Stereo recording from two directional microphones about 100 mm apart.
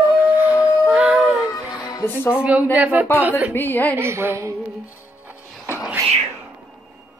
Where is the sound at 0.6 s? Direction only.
10° right (ahead or behind).